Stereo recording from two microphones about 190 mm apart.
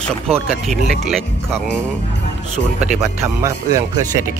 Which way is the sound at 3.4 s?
15° right (ahead or behind).